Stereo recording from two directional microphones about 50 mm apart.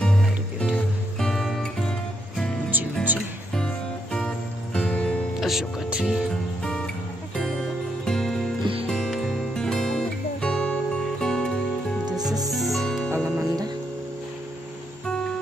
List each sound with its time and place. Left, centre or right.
0.0 s music: centre
1.1 s music: centre
2.7 s music: right
3.5 s music: centre
5.4 s music: centre
5.9 s music: centre
6.6 s music: centre
12.4 s music: centre
13.1 s music: right
15.0 s music: centre